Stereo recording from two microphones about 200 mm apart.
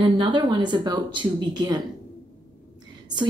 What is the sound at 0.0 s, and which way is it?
A woman's voice, 25° right (ahead or behind).